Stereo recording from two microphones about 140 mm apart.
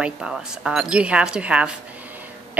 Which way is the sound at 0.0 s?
5° right (ahead or behind).